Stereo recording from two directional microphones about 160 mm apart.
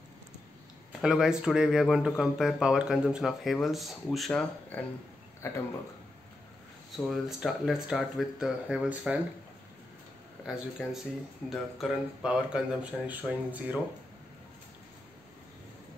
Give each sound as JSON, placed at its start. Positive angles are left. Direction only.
{"t": 1.0, "sound": "speech", "side_deg": -5}
{"t": 7.1, "sound": "speech", "side_deg": 0}
{"t": 10.4, "sound": "speech", "side_deg": -5}